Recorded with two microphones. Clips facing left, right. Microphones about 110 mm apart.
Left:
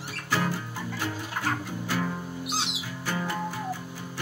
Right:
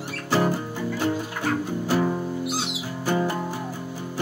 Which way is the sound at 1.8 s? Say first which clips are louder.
Right 8 dB; 30° right (ahead or behind).